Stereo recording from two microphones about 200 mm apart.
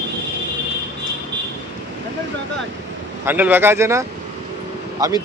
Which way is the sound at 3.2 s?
10° right (ahead or behind).